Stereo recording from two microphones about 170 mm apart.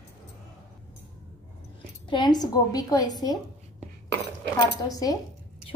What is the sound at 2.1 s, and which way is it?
A woman's voice, 25° left (ahead or behind).